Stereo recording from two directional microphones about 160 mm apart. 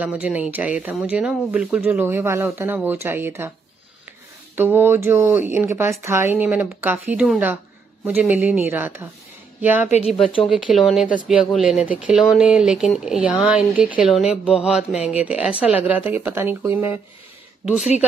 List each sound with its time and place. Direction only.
0.0 s speech: 10° right (ahead or behind)
4.6 s a woman's voice: 15° right (ahead or behind)
9.8 s speech: 45° left (ahead or behind)
10.2 s speech: 35° left (ahead or behind)
10.5 s speech: 5° right (ahead or behind)